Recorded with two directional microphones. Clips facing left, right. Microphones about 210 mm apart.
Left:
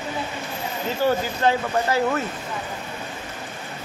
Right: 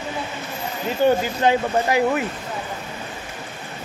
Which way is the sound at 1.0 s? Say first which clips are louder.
Right 3 dB; 15° right (ahead or behind).